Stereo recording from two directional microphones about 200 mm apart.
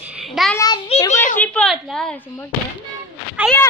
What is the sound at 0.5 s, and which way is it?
Child singing, 20° left (ahead or behind).